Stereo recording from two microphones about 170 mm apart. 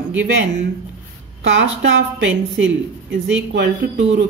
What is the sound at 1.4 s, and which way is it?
A woman's voice, 90° right.